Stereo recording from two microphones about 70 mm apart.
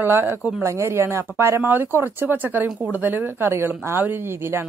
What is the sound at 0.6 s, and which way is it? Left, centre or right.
A woman's voice, right.